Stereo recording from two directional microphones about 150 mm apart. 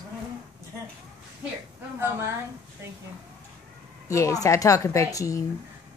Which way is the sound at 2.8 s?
20° right (ahead or behind).